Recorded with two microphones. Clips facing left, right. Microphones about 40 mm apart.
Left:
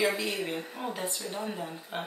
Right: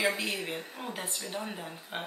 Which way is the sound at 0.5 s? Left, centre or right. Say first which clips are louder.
Left 3 dB; centre.